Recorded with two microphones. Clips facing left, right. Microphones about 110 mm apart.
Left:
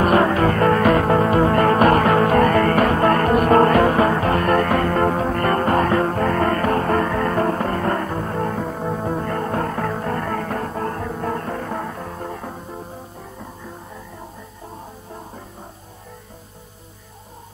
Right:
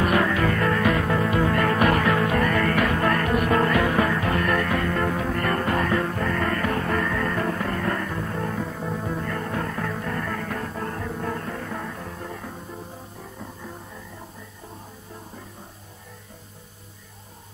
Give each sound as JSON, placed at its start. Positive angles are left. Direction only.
{"t": 0.0, "sound": "music", "side_deg": 40}